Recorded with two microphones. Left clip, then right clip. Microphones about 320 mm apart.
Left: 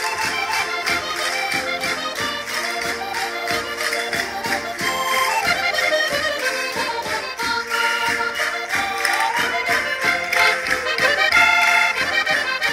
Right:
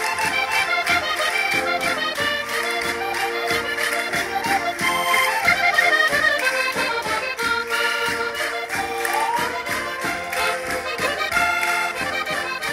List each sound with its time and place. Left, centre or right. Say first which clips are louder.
11.1 s music: left 6 dB; centre